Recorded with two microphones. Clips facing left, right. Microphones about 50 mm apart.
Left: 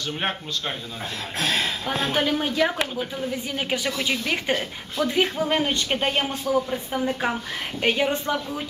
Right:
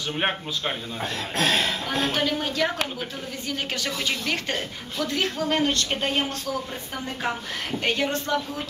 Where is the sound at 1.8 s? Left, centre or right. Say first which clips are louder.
Left 1 dB; centre.